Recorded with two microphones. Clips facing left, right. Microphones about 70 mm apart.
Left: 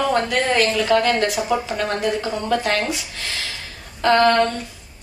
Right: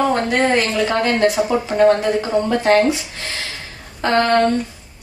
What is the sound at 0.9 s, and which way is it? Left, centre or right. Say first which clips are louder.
Speech: right 2 dB; right.